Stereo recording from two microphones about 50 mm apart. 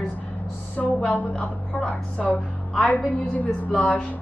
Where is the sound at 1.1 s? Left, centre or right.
Left.